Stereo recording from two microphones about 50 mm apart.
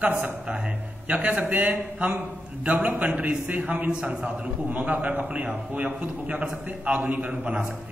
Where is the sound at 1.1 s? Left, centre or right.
Right.